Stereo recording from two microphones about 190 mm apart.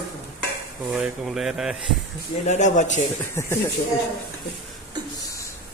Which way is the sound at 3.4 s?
15° left (ahead or behind).